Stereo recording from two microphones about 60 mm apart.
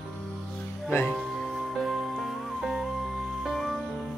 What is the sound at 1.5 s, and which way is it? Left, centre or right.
Music, centre.